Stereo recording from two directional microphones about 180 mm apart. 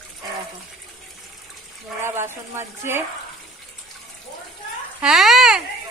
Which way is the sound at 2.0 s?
15° right (ahead or behind).